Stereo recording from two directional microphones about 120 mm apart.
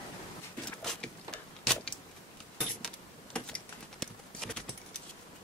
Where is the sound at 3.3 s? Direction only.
5° left (ahead or behind).